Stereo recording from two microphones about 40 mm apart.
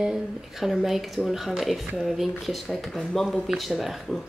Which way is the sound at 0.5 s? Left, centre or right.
Centre.